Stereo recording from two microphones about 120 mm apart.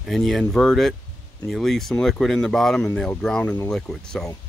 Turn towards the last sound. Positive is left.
turn(degrees=5)  # may be behind; listen again after turning